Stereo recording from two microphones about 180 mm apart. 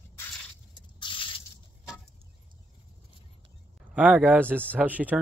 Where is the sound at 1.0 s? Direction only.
30° left (ahead or behind).